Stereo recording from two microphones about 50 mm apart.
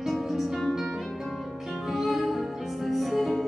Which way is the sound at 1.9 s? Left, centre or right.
Centre.